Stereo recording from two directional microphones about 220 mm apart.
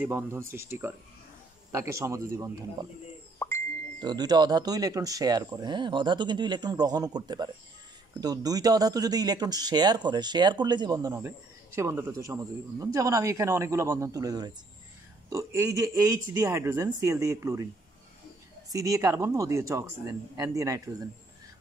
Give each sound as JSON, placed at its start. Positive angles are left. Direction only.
{"t": 0.0, "sound": "speech", "side_deg": -10}
{"t": 3.3, "sound": "plop", "side_deg": 10}
{"t": 4.0, "sound": "speech", "side_deg": -20}
{"t": 18.7, "sound": "speech", "side_deg": -15}